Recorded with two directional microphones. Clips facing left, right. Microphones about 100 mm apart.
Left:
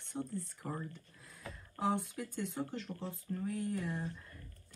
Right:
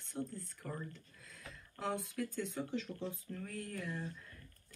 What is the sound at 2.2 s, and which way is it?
Speech, 15° left (ahead or behind).